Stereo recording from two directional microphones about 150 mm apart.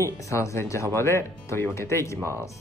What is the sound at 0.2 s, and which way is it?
Speech, 20° left (ahead or behind).